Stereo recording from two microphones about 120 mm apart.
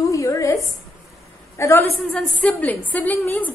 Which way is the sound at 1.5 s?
25° left (ahead or behind).